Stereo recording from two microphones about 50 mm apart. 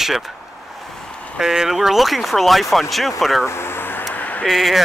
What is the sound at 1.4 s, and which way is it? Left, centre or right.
Speech, centre.